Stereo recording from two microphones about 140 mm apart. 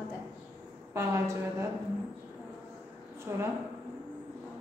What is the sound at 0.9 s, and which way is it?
Speech, 20° right (ahead or behind).